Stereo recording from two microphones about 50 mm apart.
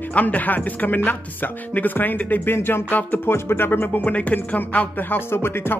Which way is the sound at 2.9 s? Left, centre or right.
Left.